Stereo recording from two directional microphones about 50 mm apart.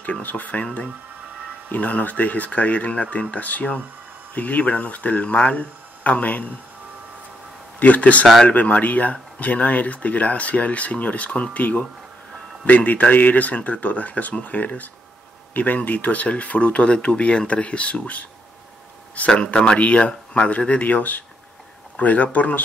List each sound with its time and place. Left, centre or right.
0.0 s speech: left
1.7 s speech: left
7.8 s speech: left